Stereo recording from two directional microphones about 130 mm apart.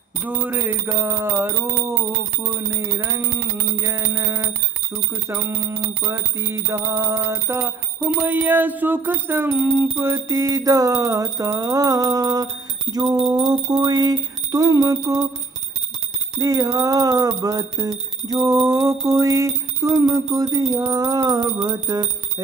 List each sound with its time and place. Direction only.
0.2 s speech: 15° right (ahead or behind)
3.8 s a sound: 25° right (ahead or behind)
5.3 s speech: 20° right (ahead or behind)
16.3 s speech: 25° right (ahead or behind)